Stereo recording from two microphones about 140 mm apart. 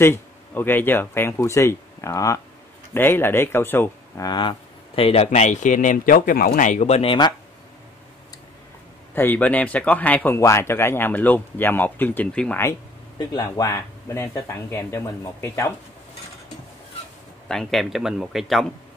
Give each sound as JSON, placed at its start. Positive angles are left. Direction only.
{"t": 0.0, "sound": "speech", "side_deg": 15}
{"t": 4.3, "sound": "speech", "side_deg": 35}
{"t": 9.1, "sound": "speech", "side_deg": 15}
{"t": 13.2, "sound": "speech", "side_deg": 30}
{"t": 17.5, "sound": "speech", "side_deg": 5}